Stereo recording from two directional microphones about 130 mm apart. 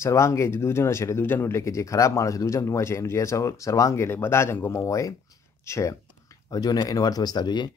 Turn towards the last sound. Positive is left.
turn(degrees=35)  # may be behind; listen again after turning